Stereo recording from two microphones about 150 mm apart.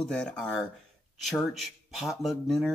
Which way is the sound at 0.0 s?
5° left (ahead or behind).